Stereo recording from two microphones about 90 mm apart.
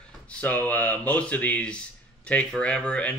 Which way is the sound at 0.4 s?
20° left (ahead or behind).